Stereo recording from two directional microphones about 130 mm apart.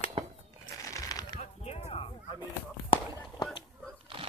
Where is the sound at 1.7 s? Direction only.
50° left (ahead or behind).